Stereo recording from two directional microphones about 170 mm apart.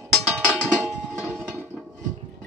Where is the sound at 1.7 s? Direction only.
5° right (ahead or behind).